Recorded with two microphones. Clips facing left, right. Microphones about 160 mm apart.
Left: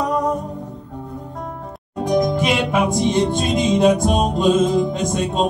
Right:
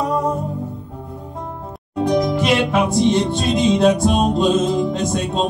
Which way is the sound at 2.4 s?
10° left (ahead or behind).